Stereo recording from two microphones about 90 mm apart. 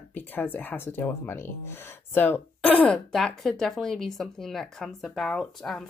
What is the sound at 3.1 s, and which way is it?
Speech, centre (ahead or behind).